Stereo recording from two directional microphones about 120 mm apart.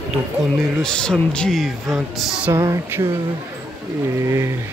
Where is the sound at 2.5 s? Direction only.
20° right (ahead or behind).